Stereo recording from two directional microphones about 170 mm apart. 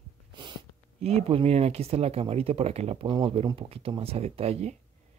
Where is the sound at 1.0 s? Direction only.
40° right (ahead or behind).